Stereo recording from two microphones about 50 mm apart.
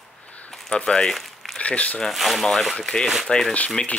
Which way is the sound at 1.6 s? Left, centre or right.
Left.